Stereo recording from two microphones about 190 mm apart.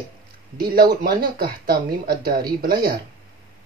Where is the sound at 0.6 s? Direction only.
55° right (ahead or behind).